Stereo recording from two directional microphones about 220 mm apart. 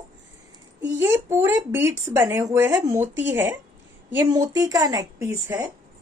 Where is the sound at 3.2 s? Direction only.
55° right (ahead or behind).